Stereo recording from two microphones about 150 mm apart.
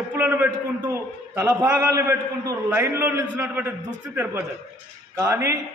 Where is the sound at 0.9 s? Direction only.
15° right (ahead or behind).